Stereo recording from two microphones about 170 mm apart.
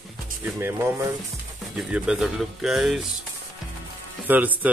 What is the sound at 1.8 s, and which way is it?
Speech, 5° right (ahead or behind).